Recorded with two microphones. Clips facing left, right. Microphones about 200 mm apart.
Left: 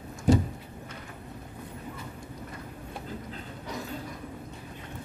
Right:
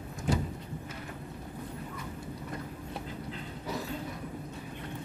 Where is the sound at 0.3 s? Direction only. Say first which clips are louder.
Left 8 dB; 40° left (ahead or behind).